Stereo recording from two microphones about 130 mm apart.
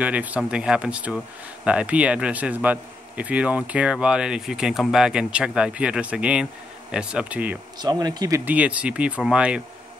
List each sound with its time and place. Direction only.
0.0 s speech: 10° right (ahead or behind)
7.8 s speech: 30° right (ahead or behind)
8.5 s speech: 10° right (ahead or behind)